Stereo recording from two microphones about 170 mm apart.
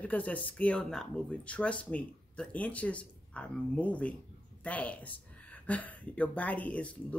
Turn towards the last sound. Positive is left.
turn(degrees=10)  # may be behind; listen again after turning